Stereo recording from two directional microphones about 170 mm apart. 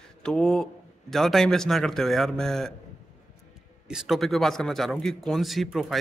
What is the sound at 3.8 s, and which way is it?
Speech, 5° right (ahead or behind).